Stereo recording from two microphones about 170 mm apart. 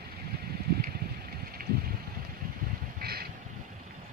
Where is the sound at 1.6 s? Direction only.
55° right (ahead or behind).